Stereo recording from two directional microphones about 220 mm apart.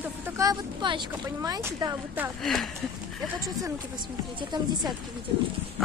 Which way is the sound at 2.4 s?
Centre (ahead or behind).